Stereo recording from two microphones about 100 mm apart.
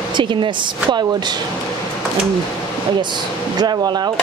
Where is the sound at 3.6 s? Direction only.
45° right (ahead or behind).